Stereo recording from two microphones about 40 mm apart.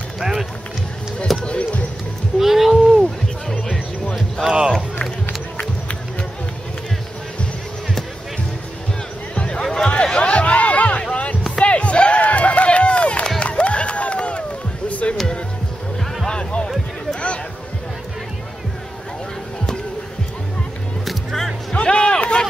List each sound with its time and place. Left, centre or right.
0.2 s run: centre
1.4 s basketball bounce: left
2.3 s a sound: centre
2.7 s music: centre
4.5 s run: centre
9.3 s music: left
10.1 s a sound: left
11.0 s music: left
11.6 s run: left
13.4 s music: left
16.3 s music: left
16.6 s a sound: centre
21.0 s music: centre
21.7 s music: left